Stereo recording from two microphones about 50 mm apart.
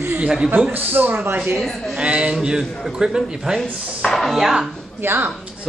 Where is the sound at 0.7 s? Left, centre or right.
Right.